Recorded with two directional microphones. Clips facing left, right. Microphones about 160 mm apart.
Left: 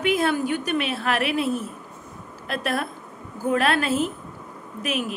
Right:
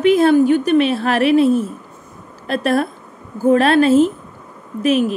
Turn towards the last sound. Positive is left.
turn(degrees=-30)  # may be behind; listen again after turning